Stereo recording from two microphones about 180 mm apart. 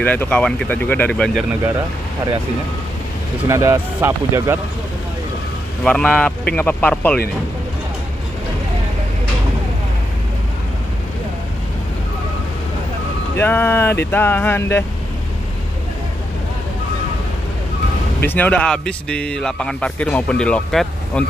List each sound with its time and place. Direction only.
0.0 s speech: 10° left (ahead or behind)
3.4 s speech: 15° right (ahead or behind)
5.9 s speech: 5° left (ahead or behind)
13.4 s speech: 10° left (ahead or behind)
18.2 s speech: 10° left (ahead or behind)